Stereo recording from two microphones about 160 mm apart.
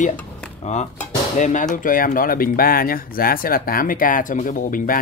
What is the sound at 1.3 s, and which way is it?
A man's voice, 50° left (ahead or behind).